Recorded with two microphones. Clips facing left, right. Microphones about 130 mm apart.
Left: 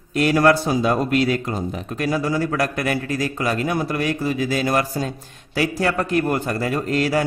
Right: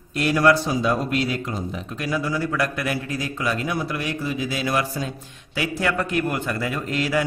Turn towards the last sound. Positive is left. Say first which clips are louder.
# left 4 dB
turn(degrees=40)  # may be behind; listen again after turning